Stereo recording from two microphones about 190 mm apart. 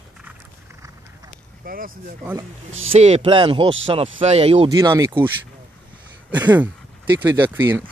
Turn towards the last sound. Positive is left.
turn(degrees=-10)  # may be behind; listen again after turning